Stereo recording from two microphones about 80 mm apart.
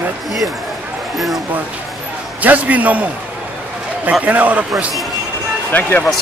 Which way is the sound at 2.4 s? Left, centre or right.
Centre.